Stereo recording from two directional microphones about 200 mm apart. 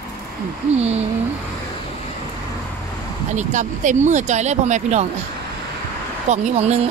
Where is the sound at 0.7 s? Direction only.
30° right (ahead or behind).